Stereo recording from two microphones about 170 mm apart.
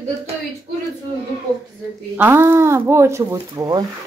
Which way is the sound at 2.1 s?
15° right (ahead or behind).